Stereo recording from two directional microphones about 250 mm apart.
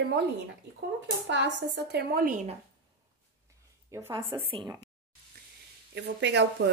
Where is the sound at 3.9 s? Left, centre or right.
Centre.